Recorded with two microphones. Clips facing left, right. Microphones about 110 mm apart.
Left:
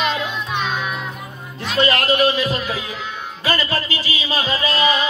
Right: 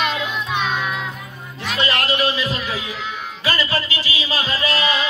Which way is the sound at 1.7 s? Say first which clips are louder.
Left 5 dB; 45° left (ahead or behind).